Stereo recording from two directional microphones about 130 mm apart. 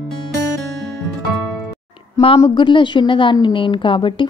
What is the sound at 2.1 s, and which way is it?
A woman's voice, 50° left (ahead or behind).